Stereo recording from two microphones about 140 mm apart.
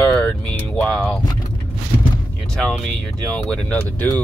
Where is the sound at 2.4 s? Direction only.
5° left (ahead or behind).